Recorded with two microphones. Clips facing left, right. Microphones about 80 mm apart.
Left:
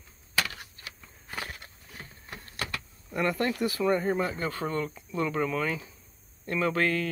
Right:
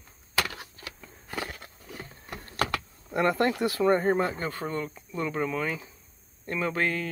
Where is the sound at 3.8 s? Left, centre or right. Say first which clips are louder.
Right 3 dB; right.